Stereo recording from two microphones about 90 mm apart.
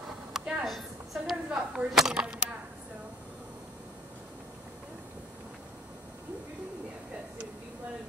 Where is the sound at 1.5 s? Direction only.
15° right (ahead or behind).